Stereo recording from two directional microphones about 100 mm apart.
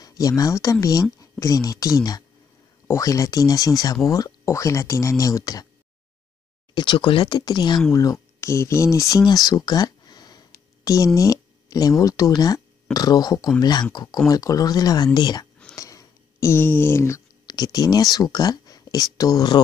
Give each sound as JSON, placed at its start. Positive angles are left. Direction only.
{"t": 0.0, "sound": "speech", "side_deg": 35}
{"t": 6.7, "sound": "speech", "side_deg": 50}
{"t": 7.9, "sound": "speech", "side_deg": 35}
{"t": 9.2, "sound": "a sound", "side_deg": 40}
{"t": 12.0, "sound": "speech", "side_deg": 35}
{"t": 15.7, "sound": "a sound", "side_deg": 35}
{"t": 17.5, "sound": "speech", "side_deg": 40}